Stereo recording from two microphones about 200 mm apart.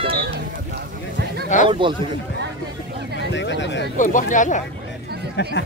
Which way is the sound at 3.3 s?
65° left (ahead or behind).